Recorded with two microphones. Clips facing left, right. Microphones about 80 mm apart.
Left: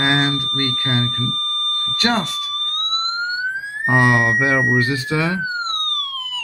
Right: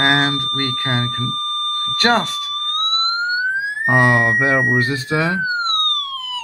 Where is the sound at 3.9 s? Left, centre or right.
Right.